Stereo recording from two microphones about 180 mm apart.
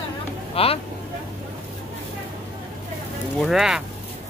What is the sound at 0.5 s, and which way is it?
Speech, 30° left (ahead or behind).